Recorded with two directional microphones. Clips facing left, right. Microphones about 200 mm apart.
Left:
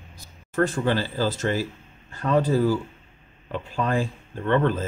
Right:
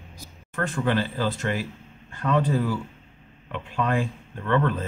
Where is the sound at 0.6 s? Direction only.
30° left (ahead or behind).